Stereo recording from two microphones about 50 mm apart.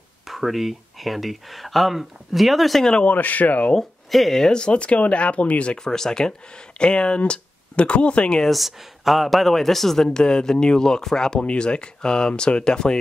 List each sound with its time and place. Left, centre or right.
0.3 s speech: centre
2.8 s speech: centre
3.1 s speech: left
3.7 s speech: centre; by 5.8 s left
5.9 s speech: centre
8.5 s speech: centre